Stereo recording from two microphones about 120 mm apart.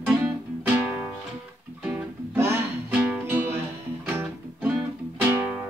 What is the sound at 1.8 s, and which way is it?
Music, 15° right (ahead or behind).